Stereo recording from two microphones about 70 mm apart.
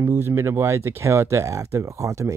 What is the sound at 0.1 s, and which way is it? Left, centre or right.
Speech, right.